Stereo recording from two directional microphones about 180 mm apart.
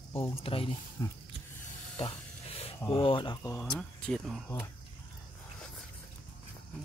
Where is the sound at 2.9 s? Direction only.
30° left (ahead or behind).